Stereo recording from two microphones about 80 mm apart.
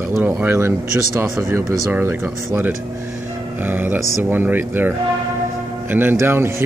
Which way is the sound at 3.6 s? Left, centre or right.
Right.